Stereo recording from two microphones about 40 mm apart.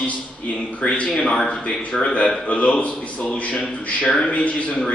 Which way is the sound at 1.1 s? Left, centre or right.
Left.